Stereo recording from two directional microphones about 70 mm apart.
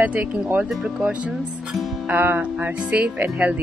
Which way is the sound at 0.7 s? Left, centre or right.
Centre.